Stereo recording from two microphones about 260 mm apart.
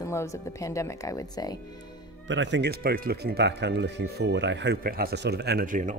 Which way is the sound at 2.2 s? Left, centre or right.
Right.